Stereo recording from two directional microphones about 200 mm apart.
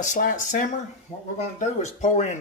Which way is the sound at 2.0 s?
35° left (ahead or behind).